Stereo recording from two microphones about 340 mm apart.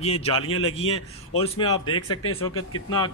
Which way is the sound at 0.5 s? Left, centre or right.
Left.